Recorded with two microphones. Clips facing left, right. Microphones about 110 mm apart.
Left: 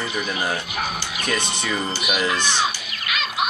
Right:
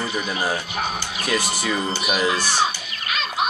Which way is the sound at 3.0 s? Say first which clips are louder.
Even; 35° right (ahead or behind).